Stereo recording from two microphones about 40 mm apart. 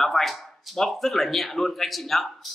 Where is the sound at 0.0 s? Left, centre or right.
Centre.